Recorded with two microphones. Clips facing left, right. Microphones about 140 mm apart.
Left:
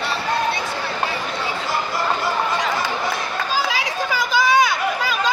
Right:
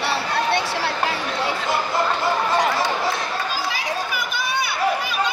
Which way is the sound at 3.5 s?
90° left.